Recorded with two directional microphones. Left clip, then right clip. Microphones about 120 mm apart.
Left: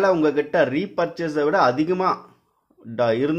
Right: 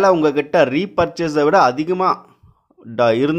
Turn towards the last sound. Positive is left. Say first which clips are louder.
# right 5 dB
turn(degrees=-35)  # may be behind; listen again after turning